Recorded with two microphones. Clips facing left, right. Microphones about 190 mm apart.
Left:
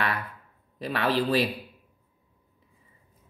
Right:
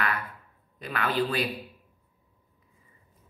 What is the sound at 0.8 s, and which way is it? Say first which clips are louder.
Speech: left 3 dB; 35° left (ahead or behind).